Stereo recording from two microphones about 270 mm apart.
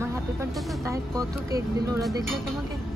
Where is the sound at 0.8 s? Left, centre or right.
Centre.